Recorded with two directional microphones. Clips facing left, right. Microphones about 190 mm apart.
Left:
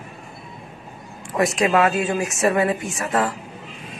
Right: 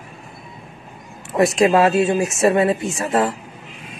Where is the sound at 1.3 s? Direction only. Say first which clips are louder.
Right 4 dB; 30° right (ahead or behind).